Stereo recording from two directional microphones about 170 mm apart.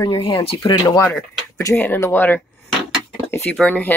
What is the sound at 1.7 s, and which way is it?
Speech, 15° left (ahead or behind).